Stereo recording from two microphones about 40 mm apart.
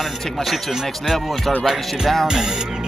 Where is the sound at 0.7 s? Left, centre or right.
Centre.